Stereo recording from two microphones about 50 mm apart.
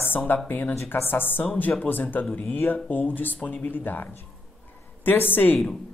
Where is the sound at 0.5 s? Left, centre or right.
Left.